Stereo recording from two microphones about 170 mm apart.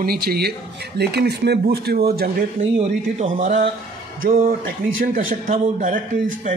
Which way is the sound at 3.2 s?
55° right (ahead or behind).